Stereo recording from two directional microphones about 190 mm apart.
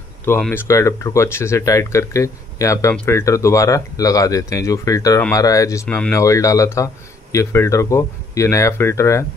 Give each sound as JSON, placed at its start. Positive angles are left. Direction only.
{"t": 0.5, "sound": "speech", "side_deg": 15}